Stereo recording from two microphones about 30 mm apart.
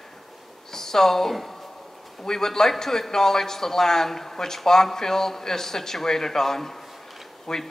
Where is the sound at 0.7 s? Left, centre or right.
Centre.